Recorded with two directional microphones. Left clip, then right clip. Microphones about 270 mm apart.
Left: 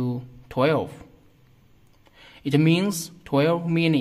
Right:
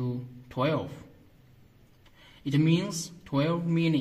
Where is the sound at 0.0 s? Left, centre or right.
Left.